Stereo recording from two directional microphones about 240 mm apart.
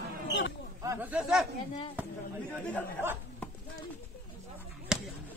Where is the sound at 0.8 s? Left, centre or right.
Centre.